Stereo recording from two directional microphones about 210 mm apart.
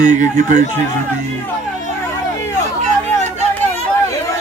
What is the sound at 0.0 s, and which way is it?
Speech, 35° right (ahead or behind).